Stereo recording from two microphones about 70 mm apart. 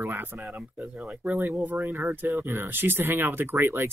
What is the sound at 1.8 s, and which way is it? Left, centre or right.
Speech, right.